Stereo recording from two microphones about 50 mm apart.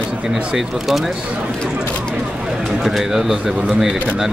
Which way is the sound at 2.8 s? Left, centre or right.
Centre.